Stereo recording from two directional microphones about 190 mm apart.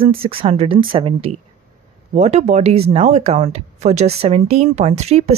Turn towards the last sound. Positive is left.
turn(degrees=-35)  # may be behind; listen again after turning